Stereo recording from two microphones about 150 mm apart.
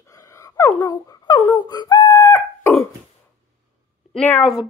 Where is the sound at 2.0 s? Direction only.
20° left (ahead or behind).